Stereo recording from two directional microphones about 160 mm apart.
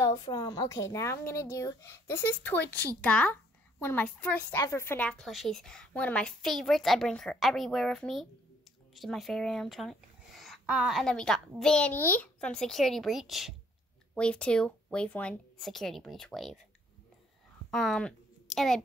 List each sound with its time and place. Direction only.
0.0 s speech: 25° left (ahead or behind); by 16.5 s centre (ahead or behind)
17.6 s speech: 5° left (ahead or behind)